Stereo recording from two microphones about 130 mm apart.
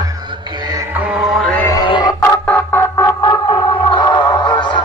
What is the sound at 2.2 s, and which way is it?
Organ, 15° left (ahead or behind).